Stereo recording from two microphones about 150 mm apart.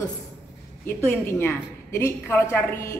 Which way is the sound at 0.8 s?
15° left (ahead or behind).